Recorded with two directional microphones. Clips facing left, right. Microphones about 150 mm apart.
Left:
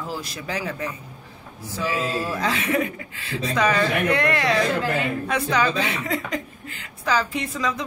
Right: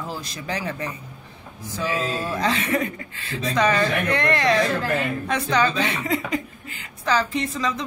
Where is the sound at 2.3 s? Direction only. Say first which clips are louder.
Right 1 dB; 5° left (ahead or behind).